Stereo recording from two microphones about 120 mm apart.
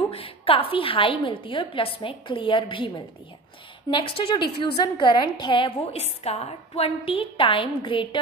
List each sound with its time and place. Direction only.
0.1 s a woman's voice: 50° left (ahead or behind)
3.9 s a woman's voice: 40° left (ahead or behind)